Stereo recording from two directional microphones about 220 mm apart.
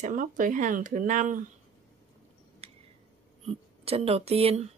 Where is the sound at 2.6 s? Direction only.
25° right (ahead or behind).